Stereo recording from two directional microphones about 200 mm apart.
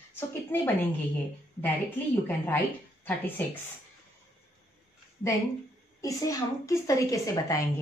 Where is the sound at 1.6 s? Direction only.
10° left (ahead or behind).